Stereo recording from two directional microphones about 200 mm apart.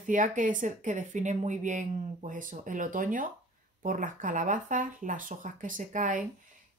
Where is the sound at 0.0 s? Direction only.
40° right (ahead or behind).